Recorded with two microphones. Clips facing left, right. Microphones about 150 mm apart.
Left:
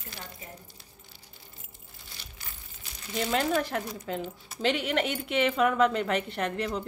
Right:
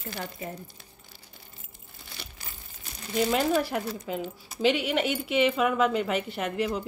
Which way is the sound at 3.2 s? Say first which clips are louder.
Right 1 dB; 5° right (ahead or behind).